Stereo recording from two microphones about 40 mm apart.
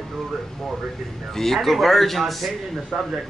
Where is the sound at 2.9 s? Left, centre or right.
Right.